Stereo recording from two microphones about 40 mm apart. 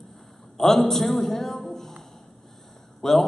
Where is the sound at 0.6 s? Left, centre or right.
Centre.